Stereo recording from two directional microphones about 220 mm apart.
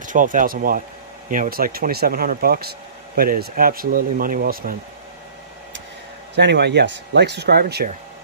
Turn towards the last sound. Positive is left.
turn(degrees=-45)  # may be behind; listen again after turning